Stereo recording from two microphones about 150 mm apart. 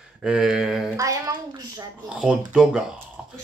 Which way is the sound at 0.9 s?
20° right (ahead or behind).